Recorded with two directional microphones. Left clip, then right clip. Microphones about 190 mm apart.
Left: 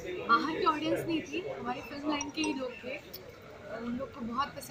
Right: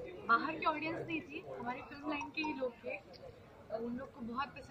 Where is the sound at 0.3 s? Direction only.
15° right (ahead or behind).